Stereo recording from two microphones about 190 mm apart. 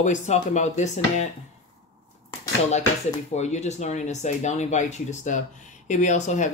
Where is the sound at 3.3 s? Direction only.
35° left (ahead or behind).